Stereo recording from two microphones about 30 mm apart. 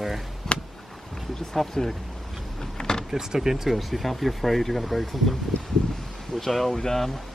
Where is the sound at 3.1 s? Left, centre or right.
Centre.